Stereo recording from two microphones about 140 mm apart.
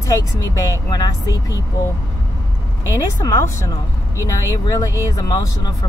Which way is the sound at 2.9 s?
25° left (ahead or behind).